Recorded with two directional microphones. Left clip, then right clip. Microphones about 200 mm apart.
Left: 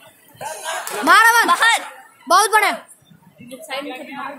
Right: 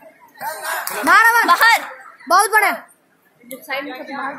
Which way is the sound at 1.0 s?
10° left (ahead or behind).